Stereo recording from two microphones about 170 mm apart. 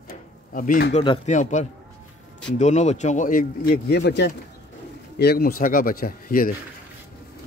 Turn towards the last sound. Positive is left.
turn(degrees=60)  # may be behind; listen again after turning